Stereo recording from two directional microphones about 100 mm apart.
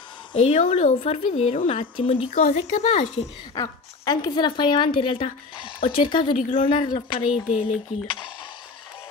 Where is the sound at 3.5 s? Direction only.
40° left (ahead or behind); by 5.2 s 60° left (ahead or behind).